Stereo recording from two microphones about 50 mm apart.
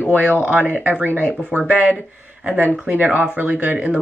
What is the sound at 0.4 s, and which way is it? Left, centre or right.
Speech, right.